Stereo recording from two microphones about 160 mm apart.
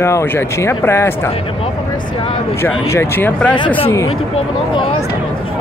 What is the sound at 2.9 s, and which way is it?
Speech, 15° left (ahead or behind).